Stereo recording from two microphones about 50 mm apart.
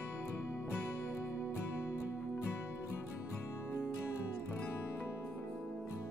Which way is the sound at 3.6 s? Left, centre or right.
Left.